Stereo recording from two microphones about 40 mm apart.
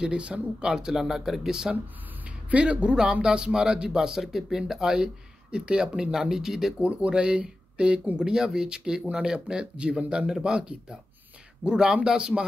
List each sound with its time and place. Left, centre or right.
0.0 s speech: right
0.9 s speech: centre
2.2 s speech: right
6.1 s speech: centre
6.8 s speech: right